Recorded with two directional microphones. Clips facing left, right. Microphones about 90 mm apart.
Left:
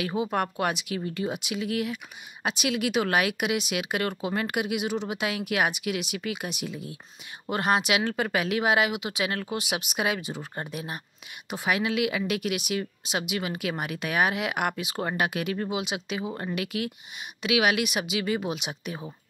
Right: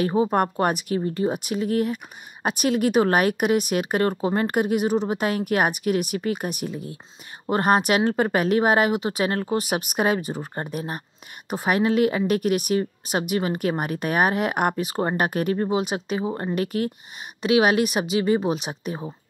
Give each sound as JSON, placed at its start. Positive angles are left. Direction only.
{"t": 0.0, "sound": "a woman's voice", "side_deg": -40}